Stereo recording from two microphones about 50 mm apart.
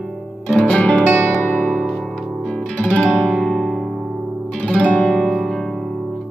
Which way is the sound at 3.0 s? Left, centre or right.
Centre.